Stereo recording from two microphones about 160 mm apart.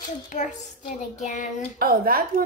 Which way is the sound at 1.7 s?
70° right (ahead or behind).